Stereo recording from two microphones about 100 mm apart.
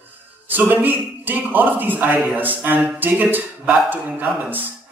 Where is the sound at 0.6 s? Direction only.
20° right (ahead or behind).